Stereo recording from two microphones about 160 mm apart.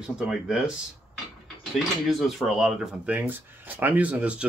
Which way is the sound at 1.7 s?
Centre (ahead or behind).